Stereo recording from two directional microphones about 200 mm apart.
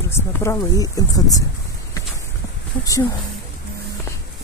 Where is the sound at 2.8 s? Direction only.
15° left (ahead or behind).